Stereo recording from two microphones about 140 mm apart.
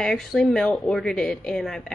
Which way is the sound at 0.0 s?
5° left (ahead or behind).